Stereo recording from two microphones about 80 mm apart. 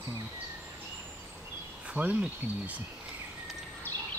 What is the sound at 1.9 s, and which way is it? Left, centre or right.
Speech, centre.